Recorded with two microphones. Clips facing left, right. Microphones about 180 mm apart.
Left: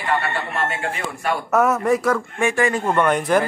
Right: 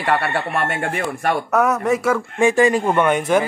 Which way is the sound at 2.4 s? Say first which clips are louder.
Right 5 dB; 15° right (ahead or behind).